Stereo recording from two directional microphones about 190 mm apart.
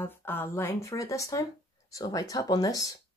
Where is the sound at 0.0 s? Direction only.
10° left (ahead or behind).